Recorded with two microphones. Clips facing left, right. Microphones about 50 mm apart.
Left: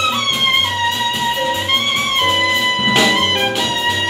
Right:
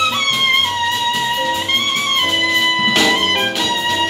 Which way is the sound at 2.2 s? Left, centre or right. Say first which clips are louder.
Left 1 dB; centre.